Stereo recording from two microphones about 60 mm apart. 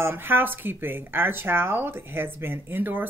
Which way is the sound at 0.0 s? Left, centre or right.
Right.